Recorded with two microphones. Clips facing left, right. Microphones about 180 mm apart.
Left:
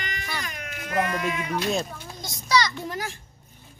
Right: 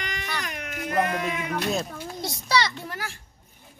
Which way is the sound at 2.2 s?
30° right (ahead or behind).